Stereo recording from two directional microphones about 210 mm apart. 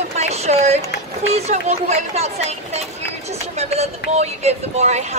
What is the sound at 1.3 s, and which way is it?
Speech, 35° right (ahead or behind).